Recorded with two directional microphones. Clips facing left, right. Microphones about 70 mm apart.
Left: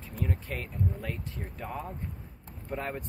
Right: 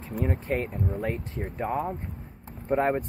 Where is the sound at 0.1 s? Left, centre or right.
Right.